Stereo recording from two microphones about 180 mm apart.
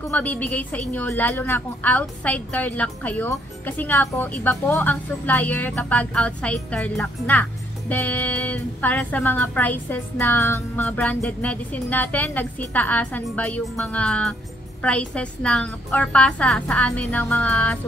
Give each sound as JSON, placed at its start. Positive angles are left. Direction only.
{"t": 0.0, "sound": "a woman's voice", "side_deg": 10}